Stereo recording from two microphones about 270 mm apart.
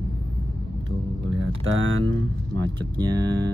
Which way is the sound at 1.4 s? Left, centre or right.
Right.